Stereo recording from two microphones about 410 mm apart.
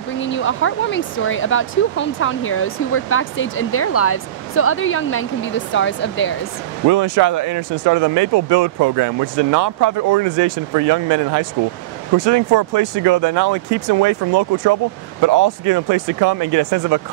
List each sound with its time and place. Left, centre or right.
0.2 s speech: left
6.9 s speech: right